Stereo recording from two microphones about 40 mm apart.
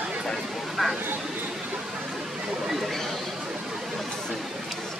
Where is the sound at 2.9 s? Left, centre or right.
Centre.